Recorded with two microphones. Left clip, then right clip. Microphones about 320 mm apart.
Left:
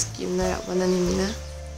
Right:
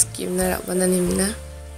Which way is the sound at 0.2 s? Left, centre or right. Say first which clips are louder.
Right 1 dB; centre.